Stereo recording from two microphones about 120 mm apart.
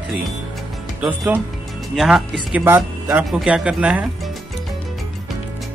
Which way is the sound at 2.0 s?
Centre (ahead or behind).